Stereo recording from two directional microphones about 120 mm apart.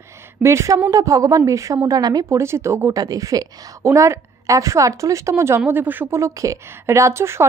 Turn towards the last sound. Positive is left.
turn(degrees=-20)  # may be behind; listen again after turning